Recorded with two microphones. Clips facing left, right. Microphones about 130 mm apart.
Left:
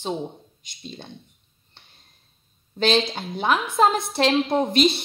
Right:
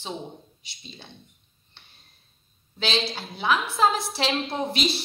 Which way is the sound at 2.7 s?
50° left (ahead or behind).